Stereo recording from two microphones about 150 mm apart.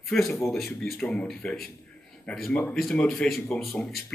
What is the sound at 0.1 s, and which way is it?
A man's voice, centre (ahead or behind).